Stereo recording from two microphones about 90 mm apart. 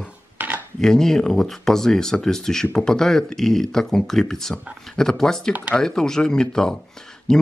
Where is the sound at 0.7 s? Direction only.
5° left (ahead or behind).